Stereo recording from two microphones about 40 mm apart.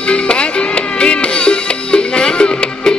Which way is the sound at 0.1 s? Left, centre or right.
Left.